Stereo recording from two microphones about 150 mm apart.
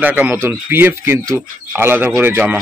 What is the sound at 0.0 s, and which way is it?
Speech, 10° right (ahead or behind).